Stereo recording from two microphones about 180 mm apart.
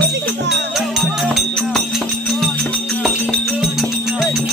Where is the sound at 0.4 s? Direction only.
75° right (ahead or behind).